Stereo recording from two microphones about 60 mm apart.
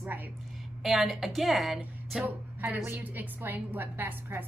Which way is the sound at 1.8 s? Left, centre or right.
Right.